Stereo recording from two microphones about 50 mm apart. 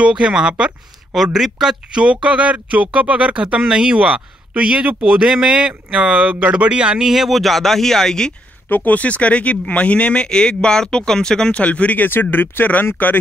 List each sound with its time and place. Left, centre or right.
0.1 s speech: centre
1.1 s speech: centre
7.1 s speech: centre
8.6 s speech: left; by 11.6 s centre
11.6 s speech: left
12.1 s speech: left